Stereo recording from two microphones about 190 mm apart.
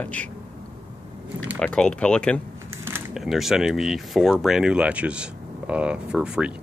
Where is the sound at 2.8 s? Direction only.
10° right (ahead or behind).